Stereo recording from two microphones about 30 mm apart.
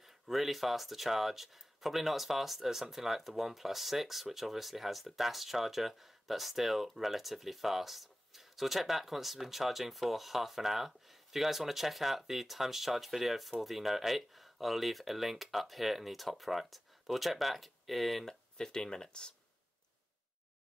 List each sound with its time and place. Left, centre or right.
0.0 s speech: centre
18.6 s speech: left